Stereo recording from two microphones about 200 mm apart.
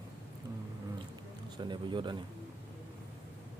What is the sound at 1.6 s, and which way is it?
Speech, 25° right (ahead or behind).